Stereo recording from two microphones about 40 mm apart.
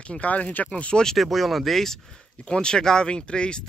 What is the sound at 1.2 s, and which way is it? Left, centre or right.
Speech, centre.